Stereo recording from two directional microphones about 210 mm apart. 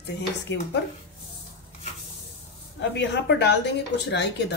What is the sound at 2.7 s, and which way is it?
A woman's voice, 55° left (ahead or behind).